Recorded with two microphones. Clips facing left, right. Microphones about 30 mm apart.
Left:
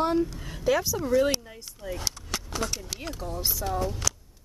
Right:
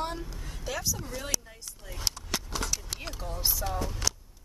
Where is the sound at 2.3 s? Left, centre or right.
Left.